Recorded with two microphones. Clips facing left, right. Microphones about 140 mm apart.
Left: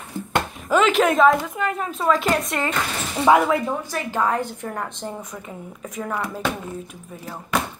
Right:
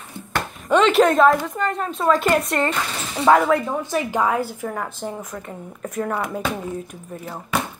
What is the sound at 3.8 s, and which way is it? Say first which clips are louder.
Speech: right 3 dB; 15° right (ahead or behind).